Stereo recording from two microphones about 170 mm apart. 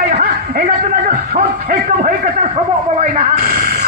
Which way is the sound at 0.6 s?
50° right (ahead or behind).